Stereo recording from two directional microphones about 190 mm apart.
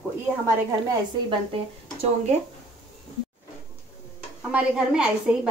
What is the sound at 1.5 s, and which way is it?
Speech, 35° right (ahead or behind).